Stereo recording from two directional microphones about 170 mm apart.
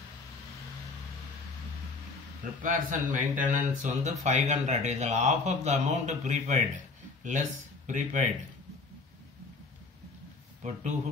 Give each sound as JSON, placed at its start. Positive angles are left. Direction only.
{"t": 2.6, "sound": "a man's voice", "side_deg": -50}
{"t": 10.6, "sound": "speech", "side_deg": -45}